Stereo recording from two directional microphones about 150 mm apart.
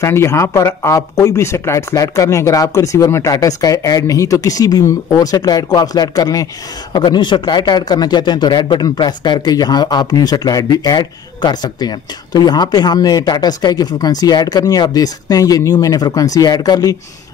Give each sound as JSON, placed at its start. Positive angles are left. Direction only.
{"t": 0.0, "sound": "speech", "side_deg": 20}